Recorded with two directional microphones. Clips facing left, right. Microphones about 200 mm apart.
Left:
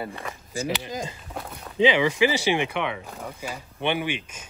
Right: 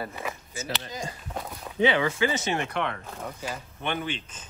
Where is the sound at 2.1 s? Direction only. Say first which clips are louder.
Left 5 dB; 90° left.